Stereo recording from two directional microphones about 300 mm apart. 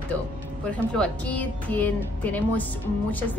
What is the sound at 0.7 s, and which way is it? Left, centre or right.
A woman's voice, centre.